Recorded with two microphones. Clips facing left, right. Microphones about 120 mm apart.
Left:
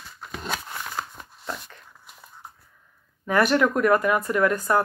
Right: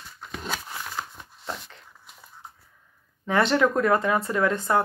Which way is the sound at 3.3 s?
25° right (ahead or behind).